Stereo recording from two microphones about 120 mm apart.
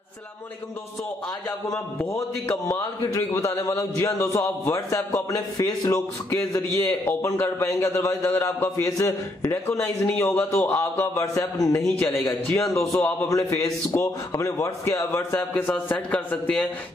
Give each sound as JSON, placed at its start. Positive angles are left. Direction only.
{"t": 1.7, "sound": "a man's voice", "side_deg": 25}
{"t": 12.0, "sound": "a man's voice", "side_deg": 15}
{"t": 13.9, "sound": "a man's voice", "side_deg": 15}
{"t": 14.3, "sound": "a man's voice", "side_deg": 25}